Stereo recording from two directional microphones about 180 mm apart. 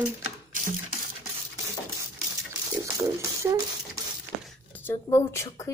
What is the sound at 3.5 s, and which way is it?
Speech, 15° right (ahead or behind).